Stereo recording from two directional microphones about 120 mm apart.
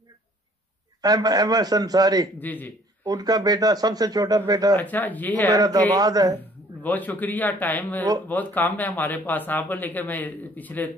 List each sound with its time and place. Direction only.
1.0 s speech: 30° right (ahead or behind)
2.4 s speech: 15° left (ahead or behind)
3.0 s speech: 30° right (ahead or behind)
4.7 s speech: 15° left (ahead or behind)
5.5 s speech: 30° right (ahead or behind)
6.8 s speech: 15° left (ahead or behind)